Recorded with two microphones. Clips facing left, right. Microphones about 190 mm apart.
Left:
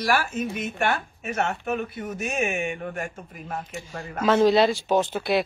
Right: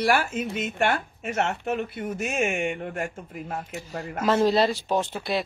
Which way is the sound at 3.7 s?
20° right (ahead or behind).